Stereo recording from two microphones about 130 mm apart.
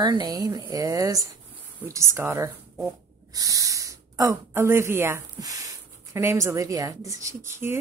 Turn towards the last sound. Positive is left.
turn(degrees=-20)  # may be behind; listen again after turning